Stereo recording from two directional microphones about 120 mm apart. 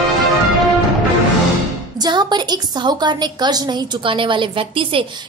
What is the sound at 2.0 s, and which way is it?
A woman's voice, 35° right (ahead or behind).